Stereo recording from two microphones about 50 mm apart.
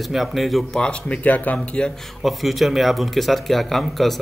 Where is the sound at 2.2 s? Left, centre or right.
Centre.